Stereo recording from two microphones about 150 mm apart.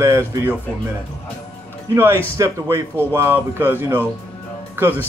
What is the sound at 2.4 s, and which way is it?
Speech, 20° right (ahead or behind).